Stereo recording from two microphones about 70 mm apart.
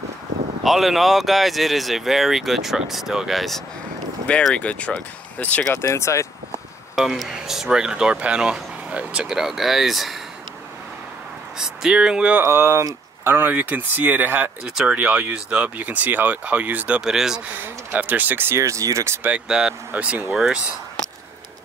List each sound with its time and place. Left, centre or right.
0.7 s speech: centre
4.3 s speech: centre
5.8 s speech: left
7.0 s speech: centre
11.5 s speech: centre
12.4 s speech: right
14.8 s speech: centre
17.0 s speech: centre
17.5 s speech: right
18.6 s speech: right
19.4 s speech: centre